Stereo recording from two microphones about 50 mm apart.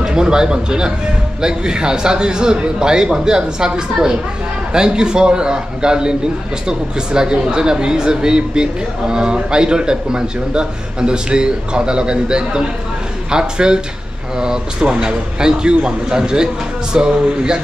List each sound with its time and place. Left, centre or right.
0.0 s a man's voice: centre